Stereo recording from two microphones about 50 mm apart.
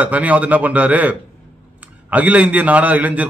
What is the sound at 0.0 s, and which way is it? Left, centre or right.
A man's voice, right.